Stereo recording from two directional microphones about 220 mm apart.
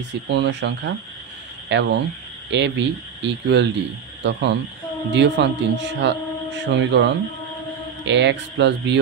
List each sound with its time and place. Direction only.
0.3 s speech: 50° right (ahead or behind)